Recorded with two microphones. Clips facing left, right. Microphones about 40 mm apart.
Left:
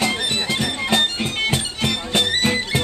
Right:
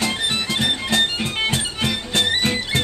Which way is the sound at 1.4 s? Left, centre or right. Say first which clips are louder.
Even; centre.